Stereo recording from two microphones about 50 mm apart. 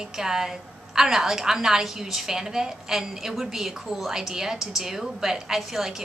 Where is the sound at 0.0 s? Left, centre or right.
Centre.